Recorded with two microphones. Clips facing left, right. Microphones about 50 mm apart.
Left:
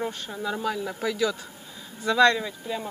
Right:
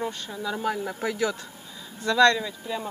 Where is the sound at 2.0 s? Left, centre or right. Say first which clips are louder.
Even; centre.